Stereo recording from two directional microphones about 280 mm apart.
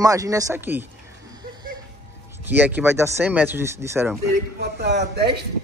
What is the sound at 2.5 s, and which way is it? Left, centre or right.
Speech, centre.